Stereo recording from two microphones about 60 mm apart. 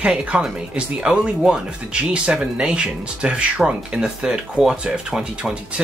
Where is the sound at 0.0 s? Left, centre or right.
Centre.